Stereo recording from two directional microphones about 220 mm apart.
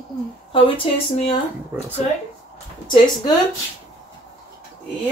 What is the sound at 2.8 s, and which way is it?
Speech, 20° left (ahead or behind).